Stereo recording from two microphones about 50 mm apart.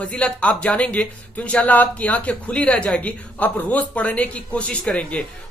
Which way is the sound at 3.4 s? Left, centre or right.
Left.